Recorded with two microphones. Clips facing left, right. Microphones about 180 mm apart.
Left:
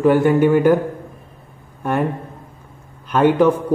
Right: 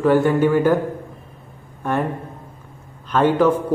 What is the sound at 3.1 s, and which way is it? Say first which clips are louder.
Speech: left 2 dB; 10° left (ahead or behind).